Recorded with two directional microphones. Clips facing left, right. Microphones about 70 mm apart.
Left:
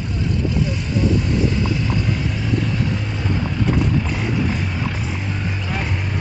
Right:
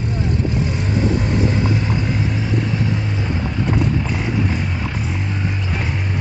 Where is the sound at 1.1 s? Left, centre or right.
Right.